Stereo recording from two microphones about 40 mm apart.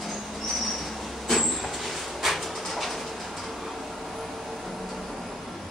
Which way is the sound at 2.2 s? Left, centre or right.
Centre.